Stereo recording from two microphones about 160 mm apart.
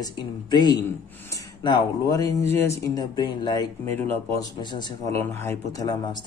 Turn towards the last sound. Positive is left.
turn(degrees=15)  # may be behind; listen again after turning